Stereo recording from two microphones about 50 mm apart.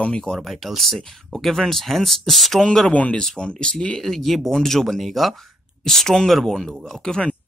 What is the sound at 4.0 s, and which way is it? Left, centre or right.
Speech, centre.